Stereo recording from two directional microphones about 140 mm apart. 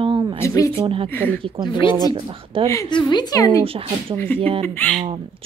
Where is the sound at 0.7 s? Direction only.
40° right (ahead or behind).